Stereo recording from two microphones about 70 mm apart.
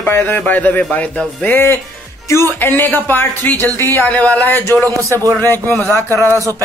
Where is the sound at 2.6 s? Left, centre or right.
Left.